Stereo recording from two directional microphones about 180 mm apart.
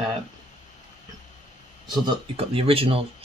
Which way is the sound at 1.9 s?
25° right (ahead or behind).